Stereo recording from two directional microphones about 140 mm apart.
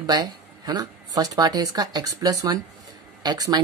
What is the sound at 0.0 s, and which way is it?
Speech, 30° right (ahead or behind).